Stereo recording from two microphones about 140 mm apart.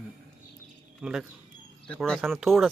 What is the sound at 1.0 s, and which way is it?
Speech, 5° right (ahead or behind).